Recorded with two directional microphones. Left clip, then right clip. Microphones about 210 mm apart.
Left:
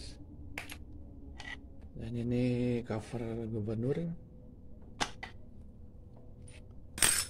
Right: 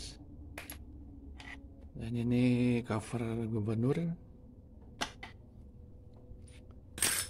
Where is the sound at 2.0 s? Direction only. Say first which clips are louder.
Right 2 dB; 15° right (ahead or behind).